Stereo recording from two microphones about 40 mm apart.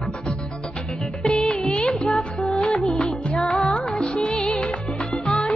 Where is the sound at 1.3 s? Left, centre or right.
Left.